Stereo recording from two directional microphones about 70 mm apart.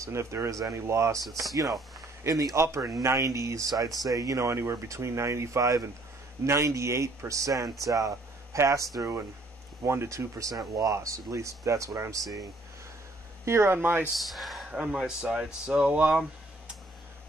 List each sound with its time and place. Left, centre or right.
0.0 s speech: right
2.2 s speech: right
13.5 s speech: right
14.1 s speech: centre
14.7 s speech: centre